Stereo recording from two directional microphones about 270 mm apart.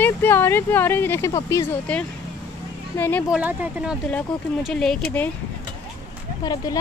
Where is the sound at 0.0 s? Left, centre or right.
Centre.